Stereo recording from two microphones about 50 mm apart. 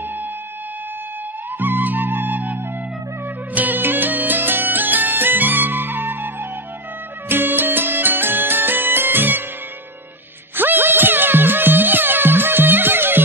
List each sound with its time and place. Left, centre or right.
1.6 s flute: right
3.5 s music: right
10.5 s music: right